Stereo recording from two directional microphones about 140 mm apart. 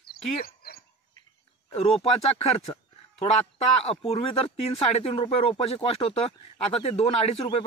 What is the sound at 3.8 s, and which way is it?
Speech, 45° left (ahead or behind).